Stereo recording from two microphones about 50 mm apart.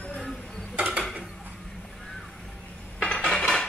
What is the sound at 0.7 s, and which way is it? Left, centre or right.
Mechanisms, right.